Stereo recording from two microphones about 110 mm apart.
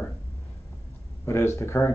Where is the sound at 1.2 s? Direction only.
25° left (ahead or behind).